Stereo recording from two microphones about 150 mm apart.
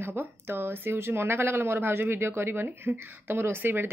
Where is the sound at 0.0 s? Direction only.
15° right (ahead or behind).